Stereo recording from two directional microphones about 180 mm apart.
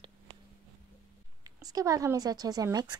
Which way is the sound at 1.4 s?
20° right (ahead or behind).